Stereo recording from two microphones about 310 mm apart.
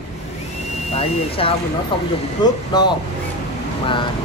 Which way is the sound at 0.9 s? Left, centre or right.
Centre.